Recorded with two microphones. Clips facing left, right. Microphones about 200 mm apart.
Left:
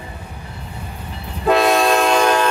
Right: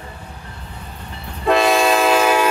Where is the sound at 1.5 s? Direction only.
Centre (ahead or behind).